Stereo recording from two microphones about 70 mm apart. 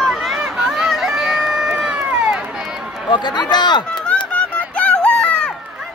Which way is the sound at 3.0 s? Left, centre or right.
Left.